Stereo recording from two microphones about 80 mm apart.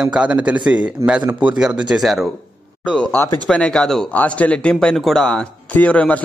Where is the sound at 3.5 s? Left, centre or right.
Centre.